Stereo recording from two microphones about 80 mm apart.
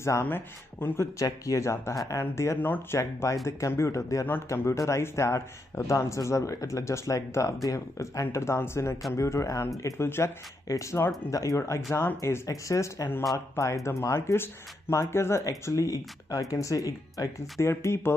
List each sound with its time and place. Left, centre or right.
0.0 s speech: left
1.2 s speech: left
3.0 s speech: left
17.6 s speech: left